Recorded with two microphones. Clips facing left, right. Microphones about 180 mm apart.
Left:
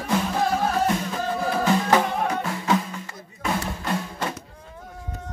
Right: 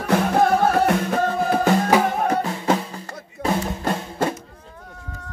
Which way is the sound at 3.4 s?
35° right (ahead or behind).